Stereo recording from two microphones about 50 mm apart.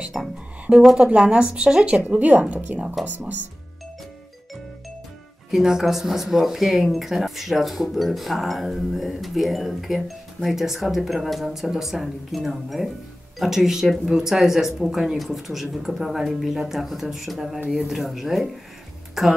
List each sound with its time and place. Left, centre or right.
0.2 s speech: centre
2.1 s a woman's voice: right
3.0 s speech: centre
5.5 s speech: centre